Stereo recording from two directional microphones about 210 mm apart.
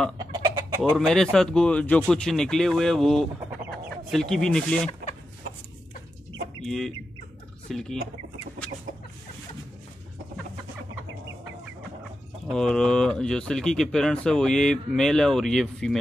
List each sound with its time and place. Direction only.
0.2 s chicken: 20° right (ahead or behind)
0.9 s speech: centre (ahead or behind)
6.6 s speech: centre (ahead or behind)
12.4 s speech: 5° left (ahead or behind)